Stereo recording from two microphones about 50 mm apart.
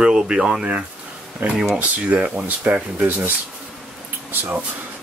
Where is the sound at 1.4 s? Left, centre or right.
Right.